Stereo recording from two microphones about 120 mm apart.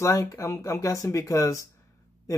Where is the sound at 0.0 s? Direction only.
25° left (ahead or behind).